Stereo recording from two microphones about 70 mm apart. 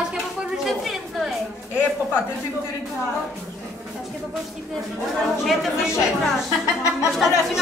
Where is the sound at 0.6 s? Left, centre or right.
Centre.